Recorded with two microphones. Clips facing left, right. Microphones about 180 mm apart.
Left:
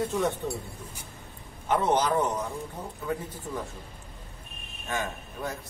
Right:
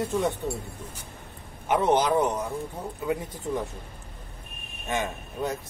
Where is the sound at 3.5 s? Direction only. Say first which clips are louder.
Right 6 dB; 15° right (ahead or behind).